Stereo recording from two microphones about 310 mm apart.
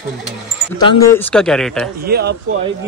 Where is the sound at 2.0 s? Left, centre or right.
Right.